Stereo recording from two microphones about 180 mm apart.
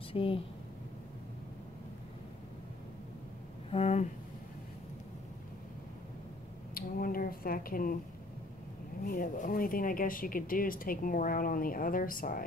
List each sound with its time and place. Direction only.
0.1 s speech: 30° left (ahead or behind)
3.7 s speech: 35° left (ahead or behind)
6.7 s a sound: 55° left (ahead or behind)
9.0 s speech: 50° left (ahead or behind)